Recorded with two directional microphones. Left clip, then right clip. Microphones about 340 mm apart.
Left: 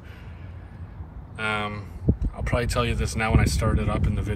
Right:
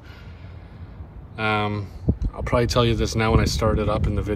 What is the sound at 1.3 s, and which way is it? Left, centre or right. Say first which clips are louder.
Speech: right 4 dB; centre.